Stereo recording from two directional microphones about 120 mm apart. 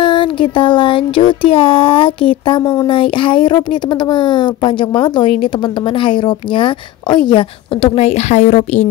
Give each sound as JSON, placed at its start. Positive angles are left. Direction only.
{"t": 0.0, "sound": "speech", "side_deg": 45}